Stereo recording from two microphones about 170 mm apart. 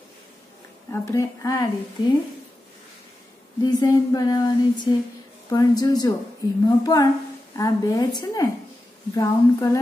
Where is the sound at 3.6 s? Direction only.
25° left (ahead or behind).